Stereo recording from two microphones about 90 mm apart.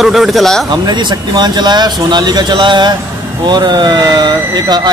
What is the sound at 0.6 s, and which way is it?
A man's voice, 55° right (ahead or behind).